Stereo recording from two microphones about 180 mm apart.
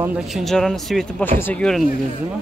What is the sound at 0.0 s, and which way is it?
Speech, 5° right (ahead or behind).